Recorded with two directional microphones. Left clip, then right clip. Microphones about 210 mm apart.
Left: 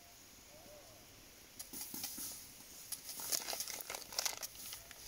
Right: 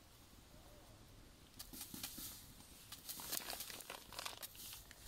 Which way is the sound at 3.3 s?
25° left (ahead or behind).